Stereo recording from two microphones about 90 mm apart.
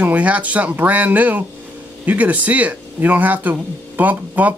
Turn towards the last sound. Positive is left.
turn(degrees=-20)  # may be behind; listen again after turning